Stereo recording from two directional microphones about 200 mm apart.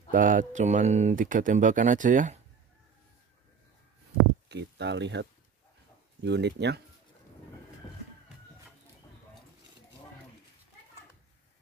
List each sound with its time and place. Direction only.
0.1 s speech: 40° right (ahead or behind)
4.5 s speech: 60° right (ahead or behind)
7.8 s music: 25° left (ahead or behind)